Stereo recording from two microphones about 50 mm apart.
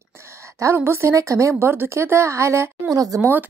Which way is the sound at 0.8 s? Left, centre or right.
Right.